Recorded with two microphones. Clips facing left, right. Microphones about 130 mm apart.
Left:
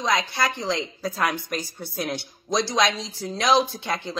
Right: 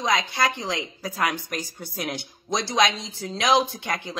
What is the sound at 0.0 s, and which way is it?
Speech, 20° right (ahead or behind).